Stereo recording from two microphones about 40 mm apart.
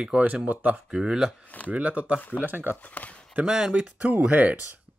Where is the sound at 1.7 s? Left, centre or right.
Right.